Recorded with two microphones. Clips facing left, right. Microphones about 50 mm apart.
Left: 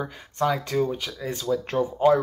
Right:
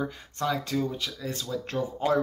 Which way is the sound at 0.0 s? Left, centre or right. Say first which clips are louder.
Left 4 dB; left.